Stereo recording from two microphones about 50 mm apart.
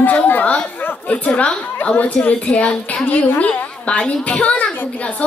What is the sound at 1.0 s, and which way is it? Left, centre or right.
A woman's voice, left.